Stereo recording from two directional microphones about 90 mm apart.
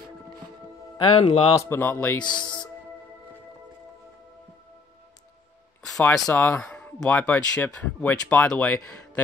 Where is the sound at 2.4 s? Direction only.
60° left (ahead or behind).